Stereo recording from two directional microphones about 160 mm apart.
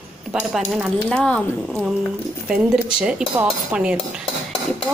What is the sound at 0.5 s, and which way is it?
Speech, centre (ahead or behind).